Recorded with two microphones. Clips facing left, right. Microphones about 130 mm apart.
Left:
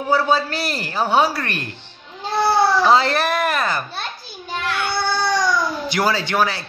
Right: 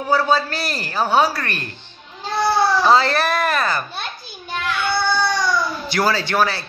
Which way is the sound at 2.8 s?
20° left (ahead or behind).